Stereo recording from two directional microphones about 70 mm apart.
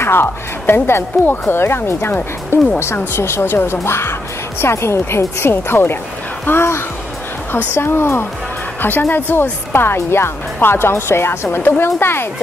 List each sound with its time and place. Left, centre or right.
0.0 s speech: left